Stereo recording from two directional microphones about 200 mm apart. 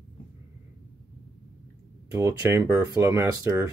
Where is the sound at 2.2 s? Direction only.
15° right (ahead or behind).